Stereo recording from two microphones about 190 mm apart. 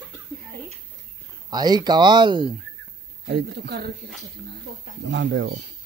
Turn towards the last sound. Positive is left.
turn(degrees=-75)  # may be behind; listen again after turning